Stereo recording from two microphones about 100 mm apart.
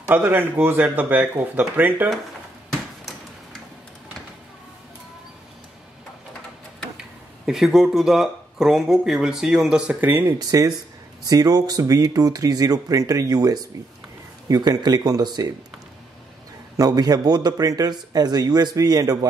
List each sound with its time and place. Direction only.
0.0 s speech: 20° right (ahead or behind)
2.7 s tick-tock: 5° left (ahead or behind)
7.0 s speech: 5° right (ahead or behind)
9.9 s speech: 20° right (ahead or behind)
10.5 s a man's voice: 35° right (ahead or behind)
16.7 s a man's voice: 40° right (ahead or behind)